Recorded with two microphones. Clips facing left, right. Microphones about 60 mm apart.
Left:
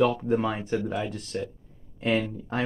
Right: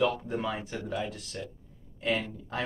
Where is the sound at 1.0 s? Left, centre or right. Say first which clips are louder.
Left 6 dB; left.